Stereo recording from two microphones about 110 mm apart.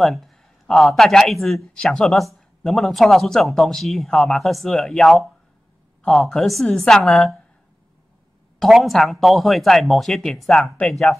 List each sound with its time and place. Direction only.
0.0 s speech: centre (ahead or behind)
8.5 s speech: centre (ahead or behind)